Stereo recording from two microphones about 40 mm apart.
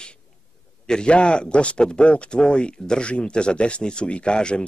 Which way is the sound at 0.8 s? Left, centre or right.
Left.